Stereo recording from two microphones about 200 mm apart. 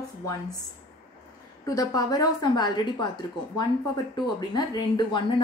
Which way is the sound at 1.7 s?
15° left (ahead or behind).